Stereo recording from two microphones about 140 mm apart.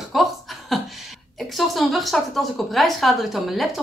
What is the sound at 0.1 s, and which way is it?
Chuckle, centre (ahead or behind).